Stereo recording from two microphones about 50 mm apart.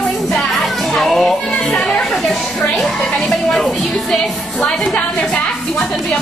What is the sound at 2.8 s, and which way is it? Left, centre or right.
Speech, centre.